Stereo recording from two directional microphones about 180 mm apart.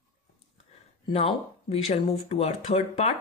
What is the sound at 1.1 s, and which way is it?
Speech, 35° left (ahead or behind).